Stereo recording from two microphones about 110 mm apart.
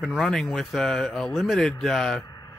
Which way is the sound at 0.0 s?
Centre (ahead or behind).